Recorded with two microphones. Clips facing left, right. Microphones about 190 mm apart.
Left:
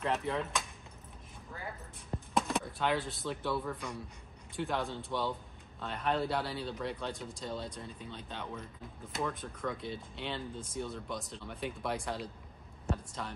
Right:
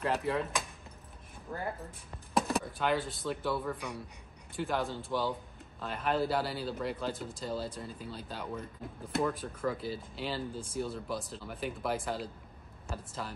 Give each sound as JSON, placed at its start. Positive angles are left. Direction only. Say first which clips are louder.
{"t": 0.0, "sound": "speech", "louder": "right 2 dB", "side_deg": 0}
{"t": 1.5, "sound": "speech", "louder": "right 8 dB", "side_deg": -60}
{"t": 2.3, "sound": "speech", "louder": "right 2 dB", "side_deg": 0}